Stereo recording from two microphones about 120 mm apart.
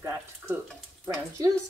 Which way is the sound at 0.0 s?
20° right (ahead or behind).